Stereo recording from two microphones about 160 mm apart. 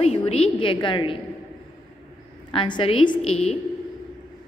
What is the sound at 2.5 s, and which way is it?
A woman's voice, 30° left (ahead or behind).